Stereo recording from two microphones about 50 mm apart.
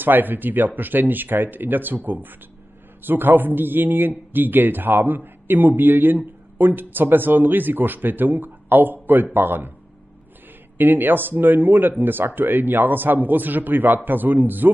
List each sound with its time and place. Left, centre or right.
0.0 s a man's voice: right
10.8 s a man's voice: right